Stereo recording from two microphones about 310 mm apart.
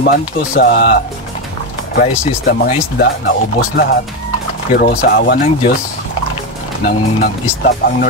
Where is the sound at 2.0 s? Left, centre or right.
Left.